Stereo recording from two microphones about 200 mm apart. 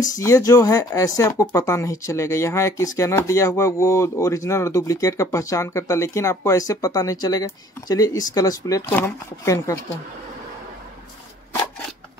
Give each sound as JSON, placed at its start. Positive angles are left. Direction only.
{"t": 0.0, "sound": "speech", "side_deg": 15}